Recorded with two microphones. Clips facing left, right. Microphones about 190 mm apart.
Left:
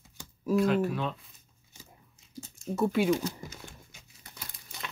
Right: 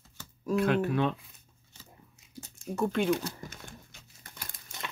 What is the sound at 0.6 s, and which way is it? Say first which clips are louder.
Speech: right 1 dB; 60° right (ahead or behind).